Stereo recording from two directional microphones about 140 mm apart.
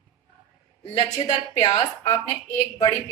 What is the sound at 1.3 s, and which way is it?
Speech, 35° left (ahead or behind).